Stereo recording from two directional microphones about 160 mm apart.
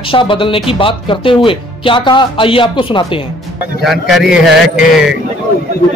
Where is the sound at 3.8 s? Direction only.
Centre (ahead or behind).